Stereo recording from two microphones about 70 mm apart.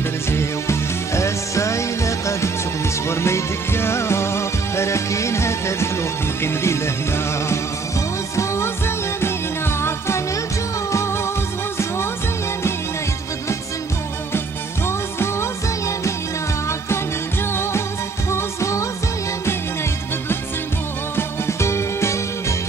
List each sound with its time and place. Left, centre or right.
0.3 s music: left
8.4 s music: left
18.3 s music: left
21.2 s music: left